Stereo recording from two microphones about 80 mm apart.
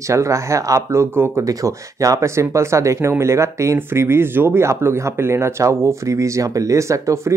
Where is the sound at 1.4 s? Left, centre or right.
Right.